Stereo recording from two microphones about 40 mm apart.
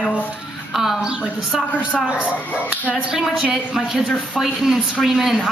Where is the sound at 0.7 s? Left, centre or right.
Centre.